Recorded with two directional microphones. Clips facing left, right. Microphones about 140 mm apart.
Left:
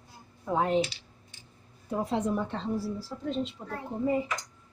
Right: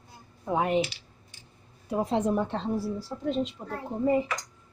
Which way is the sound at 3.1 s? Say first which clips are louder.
Right 2 dB; 35° right (ahead or behind).